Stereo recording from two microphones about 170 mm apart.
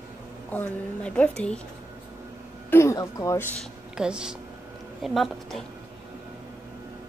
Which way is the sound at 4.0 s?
5° right (ahead or behind).